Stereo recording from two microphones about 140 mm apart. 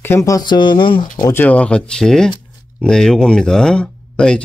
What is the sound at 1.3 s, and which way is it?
Speech, 10° left (ahead or behind).